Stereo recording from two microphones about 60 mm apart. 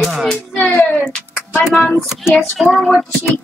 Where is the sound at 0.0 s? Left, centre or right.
Centre.